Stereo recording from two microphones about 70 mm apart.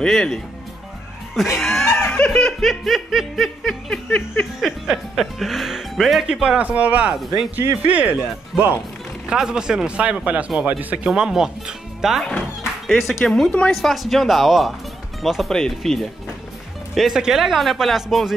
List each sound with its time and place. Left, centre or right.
0.0 s speech: centre
1.9 s laughter: left
2.1 s speech: centre
2.6 s speech: centre
6.4 s speech: centre
11.1 s speech: centre
13.2 s speech: centre
13.7 s speech: centre